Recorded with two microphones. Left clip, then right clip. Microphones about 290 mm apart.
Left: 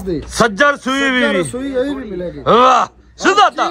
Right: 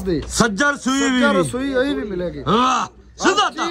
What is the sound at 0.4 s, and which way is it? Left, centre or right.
A man's voice, centre.